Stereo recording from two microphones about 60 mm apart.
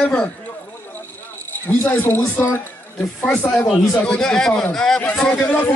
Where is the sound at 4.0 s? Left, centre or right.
Centre.